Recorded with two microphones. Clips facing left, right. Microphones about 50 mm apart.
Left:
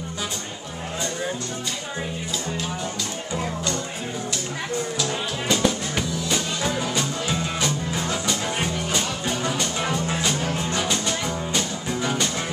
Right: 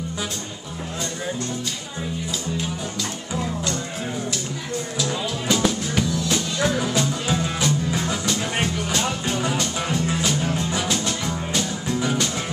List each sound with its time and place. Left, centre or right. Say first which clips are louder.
5.5 s music: right 1 dB; centre